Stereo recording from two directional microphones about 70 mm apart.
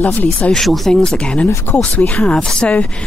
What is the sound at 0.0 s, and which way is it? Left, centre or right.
Speech, left.